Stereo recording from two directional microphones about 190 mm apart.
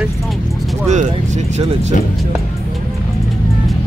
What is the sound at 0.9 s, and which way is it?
Speech, 40° right (ahead or behind).